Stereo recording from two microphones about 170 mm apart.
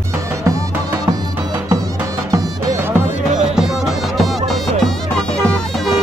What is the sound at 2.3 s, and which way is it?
Music, 20° right (ahead or behind).